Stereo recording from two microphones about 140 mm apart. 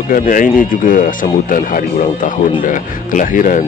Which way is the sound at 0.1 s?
70° left (ahead or behind).